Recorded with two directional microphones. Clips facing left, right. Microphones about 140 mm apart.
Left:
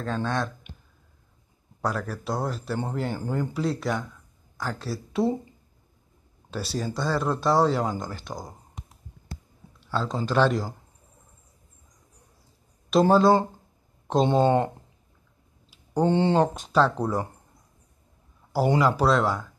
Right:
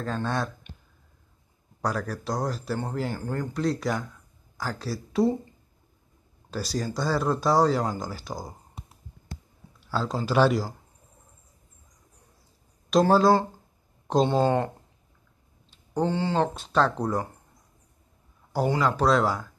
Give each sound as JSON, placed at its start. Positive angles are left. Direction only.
{"t": 0.0, "sound": "speech", "side_deg": 0}
{"t": 1.8, "sound": "speech", "side_deg": 0}
{"t": 6.5, "sound": "speech", "side_deg": 0}
{"t": 12.9, "sound": "speech", "side_deg": 0}
{"t": 14.2, "sound": "speech", "side_deg": 20}
{"t": 15.7, "sound": "a sound", "side_deg": 10}
{"t": 16.1, "sound": "speech", "side_deg": 25}
{"t": 16.3, "sound": "speech", "side_deg": 15}
{"t": 16.7, "sound": "speech", "side_deg": 0}
{"t": 18.8, "sound": "speech", "side_deg": 10}